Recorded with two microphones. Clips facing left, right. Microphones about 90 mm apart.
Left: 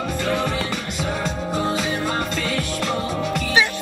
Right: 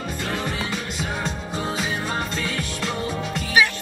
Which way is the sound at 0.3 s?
70° left (ahead or behind).